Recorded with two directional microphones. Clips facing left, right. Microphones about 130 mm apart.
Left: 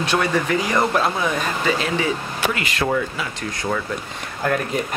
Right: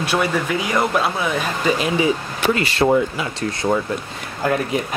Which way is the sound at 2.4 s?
30° right (ahead or behind).